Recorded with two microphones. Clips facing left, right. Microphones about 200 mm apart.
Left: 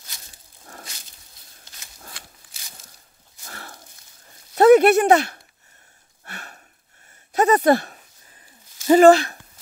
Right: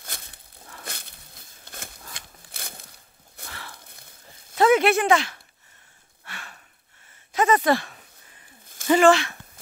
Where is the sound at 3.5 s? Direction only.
45° left (ahead or behind).